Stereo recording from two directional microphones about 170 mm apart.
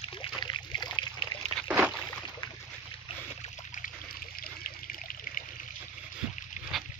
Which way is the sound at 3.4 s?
50° left (ahead or behind).